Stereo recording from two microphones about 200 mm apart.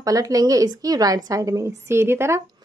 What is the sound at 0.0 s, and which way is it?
A woman's voice, 15° right (ahead or behind).